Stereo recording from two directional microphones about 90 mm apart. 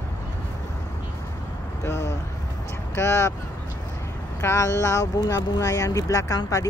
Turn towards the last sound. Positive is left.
turn(degrees=40)  # may be behind; listen again after turning